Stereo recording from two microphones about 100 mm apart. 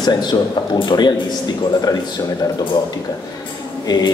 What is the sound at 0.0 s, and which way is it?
Speech, 45° left (ahead or behind).